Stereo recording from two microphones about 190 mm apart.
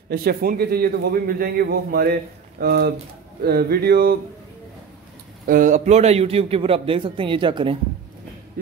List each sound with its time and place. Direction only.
0.1 s a man's voice: 55° right (ahead or behind)
5.5 s a man's voice: 40° right (ahead or behind); by 7.7 s 25° right (ahead or behind)